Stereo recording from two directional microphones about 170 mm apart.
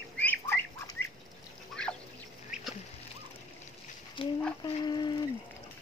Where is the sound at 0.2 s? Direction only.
10° left (ahead or behind).